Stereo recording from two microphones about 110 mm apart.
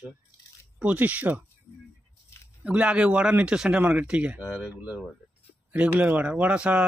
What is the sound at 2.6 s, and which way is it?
Speech, 10° right (ahead or behind).